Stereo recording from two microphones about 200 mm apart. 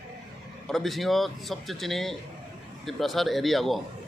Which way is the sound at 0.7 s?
Centre (ahead or behind).